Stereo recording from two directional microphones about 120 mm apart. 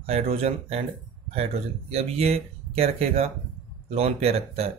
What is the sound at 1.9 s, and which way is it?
Speech, 55° right (ahead or behind).